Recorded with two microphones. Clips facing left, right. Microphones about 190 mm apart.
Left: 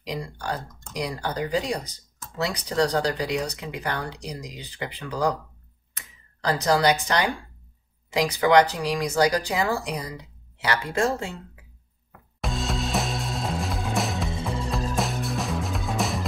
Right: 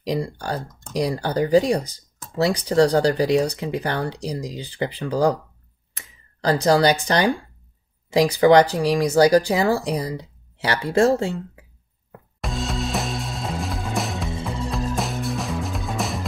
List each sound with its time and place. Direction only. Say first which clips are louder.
0.0 s speech: right 7 dB; 35° right (ahead or behind)
12.4 s music: right 2 dB; centre (ahead or behind)